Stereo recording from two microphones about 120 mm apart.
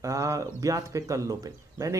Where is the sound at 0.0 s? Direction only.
25° right (ahead or behind).